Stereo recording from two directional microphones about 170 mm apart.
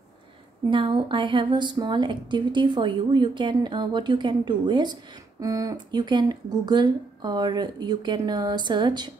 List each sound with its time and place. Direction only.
0.7 s a woman's voice: 30° right (ahead or behind)